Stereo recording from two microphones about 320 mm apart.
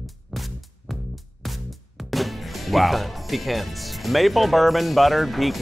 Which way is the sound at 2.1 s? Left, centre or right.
Centre.